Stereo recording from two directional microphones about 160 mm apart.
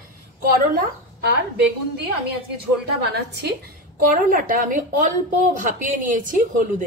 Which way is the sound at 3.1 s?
85° right.